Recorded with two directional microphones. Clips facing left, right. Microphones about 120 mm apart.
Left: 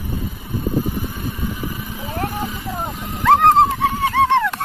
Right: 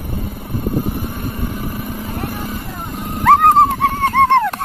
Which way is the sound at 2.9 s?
55° right (ahead or behind).